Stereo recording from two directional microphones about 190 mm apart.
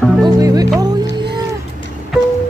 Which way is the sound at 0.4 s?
20° right (ahead or behind).